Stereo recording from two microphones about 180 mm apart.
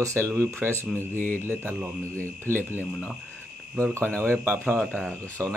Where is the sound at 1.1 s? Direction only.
10° left (ahead or behind).